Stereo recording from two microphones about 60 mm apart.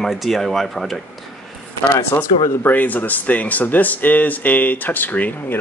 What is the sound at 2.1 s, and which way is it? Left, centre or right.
Speech, left.